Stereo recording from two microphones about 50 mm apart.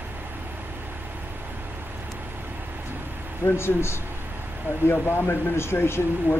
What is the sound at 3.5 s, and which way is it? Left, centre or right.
Speech, left.